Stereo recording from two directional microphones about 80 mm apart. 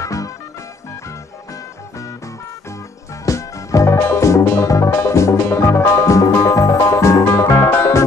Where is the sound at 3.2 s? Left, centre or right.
Left.